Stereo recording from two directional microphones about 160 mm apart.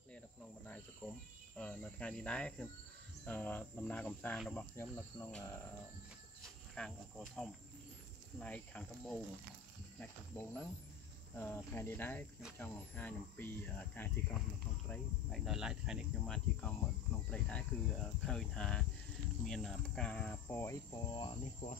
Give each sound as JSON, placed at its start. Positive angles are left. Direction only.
{"t": 1.0, "sound": "cricket", "side_deg": 15}
{"t": 3.3, "sound": "speech", "side_deg": 10}
{"t": 6.4, "sound": "speech", "side_deg": 5}
{"t": 14.9, "sound": "speech", "side_deg": 0}
{"t": 16.6, "sound": "speech", "side_deg": 10}
{"t": 20.4, "sound": "speech", "side_deg": 15}
{"t": 21.1, "sound": "speech", "side_deg": 30}